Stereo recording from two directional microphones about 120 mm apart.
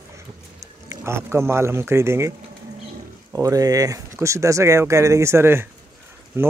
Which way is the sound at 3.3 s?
30° right (ahead or behind).